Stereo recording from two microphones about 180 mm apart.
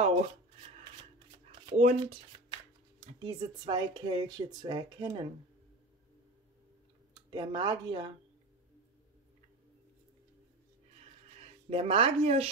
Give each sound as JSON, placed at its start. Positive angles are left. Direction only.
{"t": 1.7, "sound": "speech", "side_deg": -35}
{"t": 7.2, "sound": "speech", "side_deg": -25}
{"t": 11.7, "sound": "speech", "side_deg": -35}